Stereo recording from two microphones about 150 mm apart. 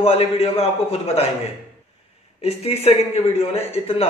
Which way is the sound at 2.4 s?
45° left (ahead or behind).